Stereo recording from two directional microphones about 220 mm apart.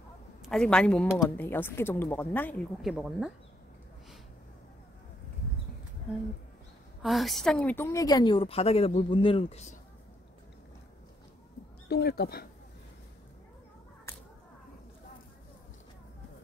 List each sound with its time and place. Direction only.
0.5 s a woman's voice: 5° left (ahead or behind)
7.0 s a woman's voice: centre (ahead or behind); by 9.8 s 30° left (ahead or behind)
11.9 s speech: 45° left (ahead or behind)